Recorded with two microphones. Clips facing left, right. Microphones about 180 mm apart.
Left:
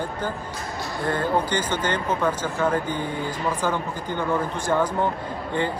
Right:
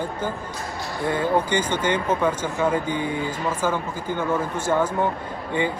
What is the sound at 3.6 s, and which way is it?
Speech, 15° left (ahead or behind).